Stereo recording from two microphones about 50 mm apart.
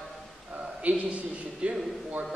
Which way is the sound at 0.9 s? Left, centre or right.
Right.